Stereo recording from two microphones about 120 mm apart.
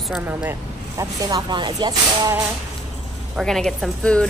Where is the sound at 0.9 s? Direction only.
30° right (ahead or behind).